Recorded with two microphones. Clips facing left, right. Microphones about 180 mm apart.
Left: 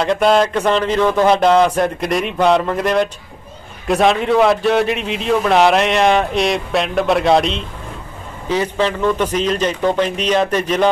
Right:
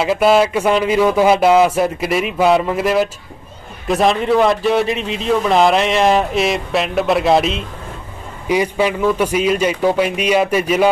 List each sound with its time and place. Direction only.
0.0 s a man's voice: 5° right (ahead or behind)